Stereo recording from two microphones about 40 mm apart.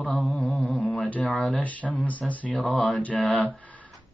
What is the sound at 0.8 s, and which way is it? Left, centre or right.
Speech, left.